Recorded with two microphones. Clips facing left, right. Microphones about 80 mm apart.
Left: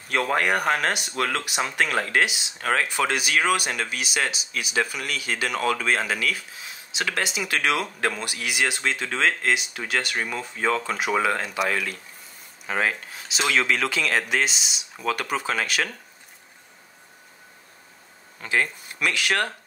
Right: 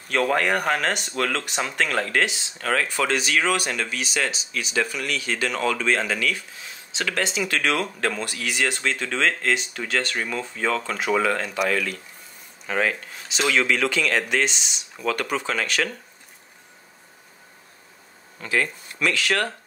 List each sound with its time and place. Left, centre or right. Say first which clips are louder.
0.1 s speech: right 1 dB; centre
18.4 s speech: even; left